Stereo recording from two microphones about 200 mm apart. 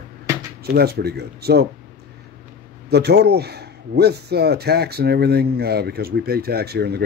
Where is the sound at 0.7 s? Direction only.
50° right (ahead or behind).